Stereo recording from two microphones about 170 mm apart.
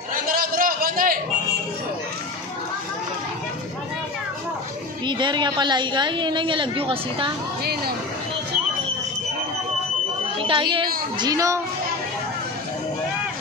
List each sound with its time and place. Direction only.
0.1 s a sound: 55° right (ahead or behind)
5.0 s a woman's voice: 25° right (ahead or behind)
10.4 s a woman's voice: 30° right (ahead or behind)